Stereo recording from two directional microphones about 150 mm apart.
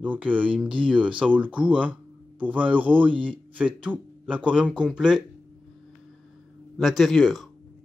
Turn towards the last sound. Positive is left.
turn(degrees=0)  # may be behind; listen again after turning